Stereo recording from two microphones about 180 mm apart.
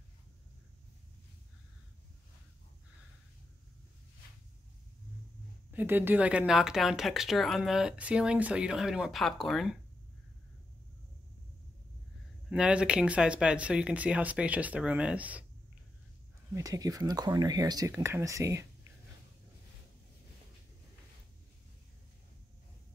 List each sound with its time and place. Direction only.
5.7 s speech: 10° right (ahead or behind)
12.4 s speech: 5° right (ahead or behind)
16.5 s speech: 20° right (ahead or behind)